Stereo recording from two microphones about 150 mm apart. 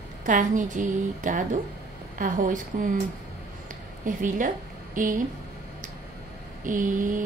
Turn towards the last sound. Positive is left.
turn(degrees=-60)  # may be behind; listen again after turning